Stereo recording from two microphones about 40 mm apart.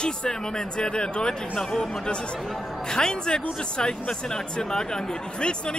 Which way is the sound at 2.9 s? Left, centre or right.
Centre.